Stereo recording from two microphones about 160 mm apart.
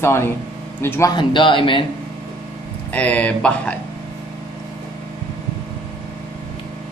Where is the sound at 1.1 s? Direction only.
30° left (ahead or behind).